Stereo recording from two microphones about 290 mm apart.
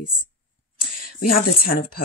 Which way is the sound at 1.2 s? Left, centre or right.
Left.